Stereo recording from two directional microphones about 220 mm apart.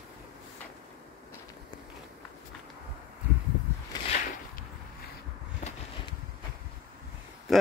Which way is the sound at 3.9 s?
25° left (ahead or behind).